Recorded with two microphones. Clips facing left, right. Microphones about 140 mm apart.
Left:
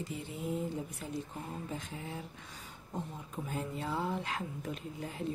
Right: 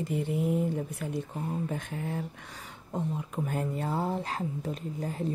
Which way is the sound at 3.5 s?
50° right (ahead or behind).